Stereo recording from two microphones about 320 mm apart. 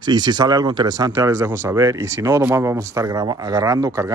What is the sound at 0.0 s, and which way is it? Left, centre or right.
Speech, centre.